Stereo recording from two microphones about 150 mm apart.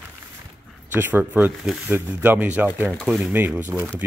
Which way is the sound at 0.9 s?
10° right (ahead or behind).